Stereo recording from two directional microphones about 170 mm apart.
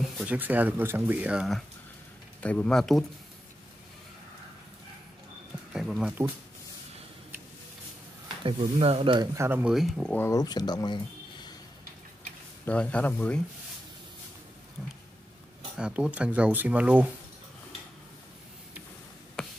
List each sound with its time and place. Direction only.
0.0 s speech: 5° right (ahead or behind)
5.7 s speech: 5° right (ahead or behind)
8.5 s speech: 30° right (ahead or behind); by 9.8 s 10° right (ahead or behind)
9.8 s speech: centre (ahead or behind)
10.1 s speech: 15° left (ahead or behind)
12.6 s a man's voice: 5° left (ahead or behind)
15.8 s speech: 5° right (ahead or behind)
19.4 s a sound: 5° left (ahead or behind)